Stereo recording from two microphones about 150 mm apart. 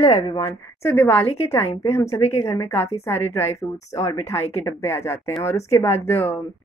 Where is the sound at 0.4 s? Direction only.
15° left (ahead or behind).